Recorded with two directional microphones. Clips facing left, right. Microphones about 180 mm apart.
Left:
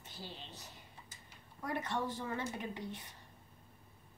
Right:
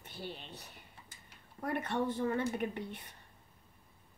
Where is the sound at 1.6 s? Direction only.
60° right (ahead or behind).